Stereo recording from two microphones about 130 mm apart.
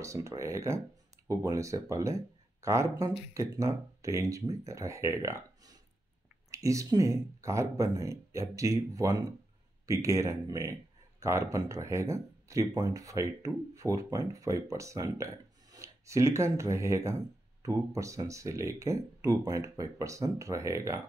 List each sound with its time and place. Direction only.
0.0 s speech: 25° right (ahead or behind)